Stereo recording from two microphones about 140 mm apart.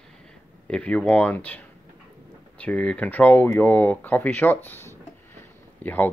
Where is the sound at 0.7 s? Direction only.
10° left (ahead or behind).